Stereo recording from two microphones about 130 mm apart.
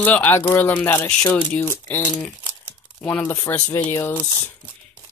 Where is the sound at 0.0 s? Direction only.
15° left (ahead or behind).